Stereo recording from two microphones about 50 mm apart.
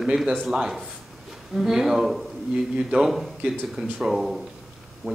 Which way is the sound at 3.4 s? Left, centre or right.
Right.